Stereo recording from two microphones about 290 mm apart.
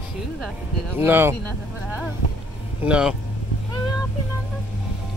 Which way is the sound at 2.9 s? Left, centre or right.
Centre.